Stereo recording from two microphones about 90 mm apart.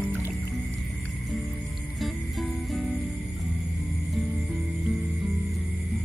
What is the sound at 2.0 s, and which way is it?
Music, centre (ahead or behind).